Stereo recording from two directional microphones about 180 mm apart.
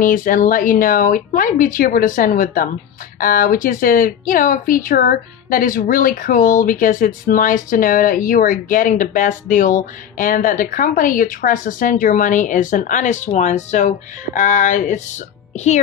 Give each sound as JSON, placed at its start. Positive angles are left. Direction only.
{"t": 0.0, "sound": "a woman's voice", "side_deg": 50}